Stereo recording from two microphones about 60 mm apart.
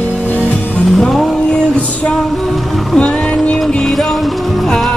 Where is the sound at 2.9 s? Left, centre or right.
Centre.